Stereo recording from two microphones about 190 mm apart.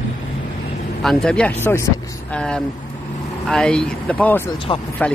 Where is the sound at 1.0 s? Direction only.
Centre (ahead or behind).